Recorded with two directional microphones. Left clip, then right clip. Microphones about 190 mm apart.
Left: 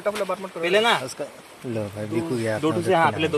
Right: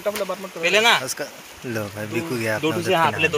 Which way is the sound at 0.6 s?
40° left (ahead or behind).